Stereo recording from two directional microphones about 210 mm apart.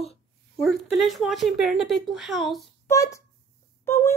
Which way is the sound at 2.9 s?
15° left (ahead or behind).